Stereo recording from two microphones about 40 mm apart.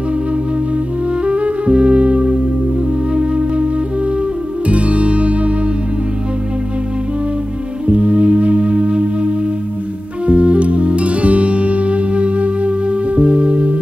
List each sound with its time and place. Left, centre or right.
1.2 s music: right
7.8 s music: right